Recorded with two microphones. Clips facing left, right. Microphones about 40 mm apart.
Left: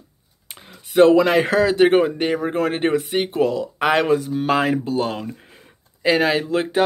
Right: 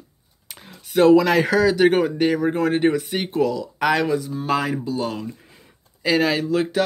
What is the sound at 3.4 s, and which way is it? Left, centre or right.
Speech, left.